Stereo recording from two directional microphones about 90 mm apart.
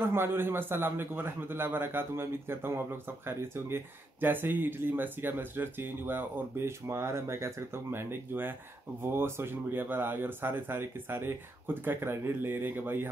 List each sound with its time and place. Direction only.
0.0 s a man's voice: 25° right (ahead or behind)